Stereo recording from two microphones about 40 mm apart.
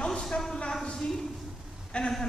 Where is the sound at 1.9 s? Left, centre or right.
Left.